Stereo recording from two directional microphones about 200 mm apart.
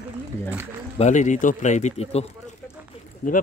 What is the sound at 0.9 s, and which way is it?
Speech, 35° left (ahead or behind).